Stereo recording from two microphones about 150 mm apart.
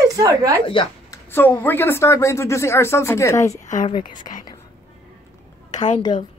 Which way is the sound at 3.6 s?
55° left (ahead or behind).